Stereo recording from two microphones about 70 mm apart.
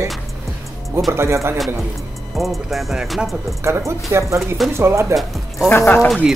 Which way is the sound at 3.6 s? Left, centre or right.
Right.